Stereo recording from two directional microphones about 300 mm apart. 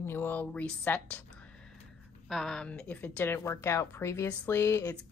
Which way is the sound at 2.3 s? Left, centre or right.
Centre.